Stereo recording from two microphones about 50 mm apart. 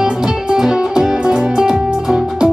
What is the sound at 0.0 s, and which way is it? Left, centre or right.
Music, centre.